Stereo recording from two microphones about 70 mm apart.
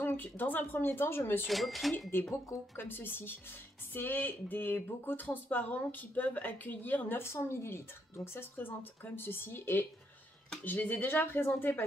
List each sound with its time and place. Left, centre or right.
0.0 s speech: left
1.5 s speech: centre
2.8 s speech: left